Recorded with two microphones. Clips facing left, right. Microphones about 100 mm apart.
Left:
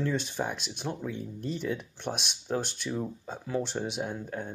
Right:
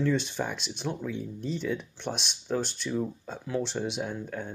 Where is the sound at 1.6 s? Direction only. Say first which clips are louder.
Right 1 dB; 5° left (ahead or behind).